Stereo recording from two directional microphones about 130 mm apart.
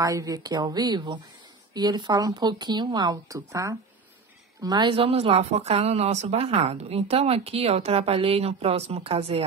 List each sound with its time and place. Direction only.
0.0 s speech: 25° right (ahead or behind); by 9.4 s 50° right (ahead or behind)